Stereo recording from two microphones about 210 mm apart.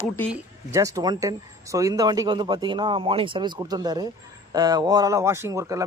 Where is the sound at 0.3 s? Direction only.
15° right (ahead or behind).